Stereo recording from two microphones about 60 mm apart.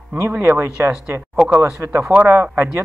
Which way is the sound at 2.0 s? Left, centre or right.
Centre.